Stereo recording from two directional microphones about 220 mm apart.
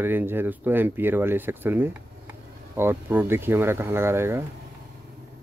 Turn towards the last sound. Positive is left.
turn(degrees=-10)  # may be behind; listen again after turning